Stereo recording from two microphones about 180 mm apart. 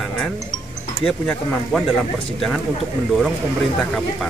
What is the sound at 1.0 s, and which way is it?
Speech, 5° left (ahead or behind).